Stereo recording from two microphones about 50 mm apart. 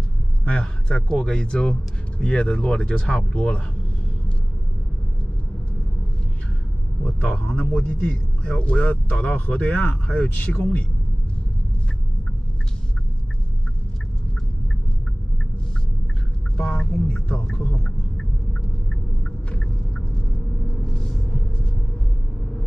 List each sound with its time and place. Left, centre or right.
0.5 s speech: centre
7.1 s speech: left
16.5 s speech: centre
17.1 s a sound: centre